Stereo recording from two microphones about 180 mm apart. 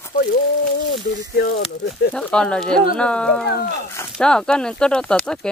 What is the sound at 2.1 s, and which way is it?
Speech, 5° left (ahead or behind).